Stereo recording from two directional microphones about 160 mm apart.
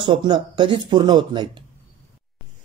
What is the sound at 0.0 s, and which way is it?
A man's voice, 30° right (ahead or behind).